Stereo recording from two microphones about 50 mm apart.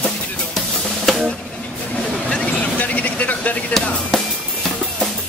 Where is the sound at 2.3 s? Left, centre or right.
Left.